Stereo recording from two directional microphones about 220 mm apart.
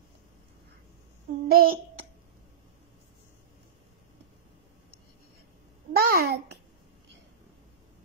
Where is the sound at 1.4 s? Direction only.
40° right (ahead or behind).